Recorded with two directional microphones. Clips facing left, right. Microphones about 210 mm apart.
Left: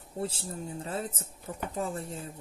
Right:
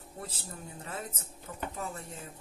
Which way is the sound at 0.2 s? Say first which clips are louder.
Left 9 dB; 30° left (ahead or behind).